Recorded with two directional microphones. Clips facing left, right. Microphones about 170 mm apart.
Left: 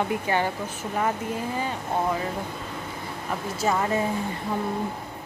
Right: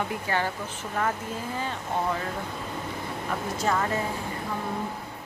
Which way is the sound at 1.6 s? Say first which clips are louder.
Left 1 dB; 10° left (ahead or behind).